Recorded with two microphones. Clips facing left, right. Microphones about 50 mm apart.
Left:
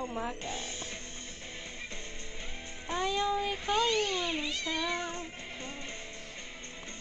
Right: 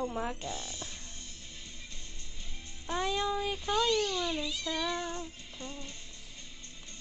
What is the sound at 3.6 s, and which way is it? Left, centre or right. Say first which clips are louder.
Speech: even; left.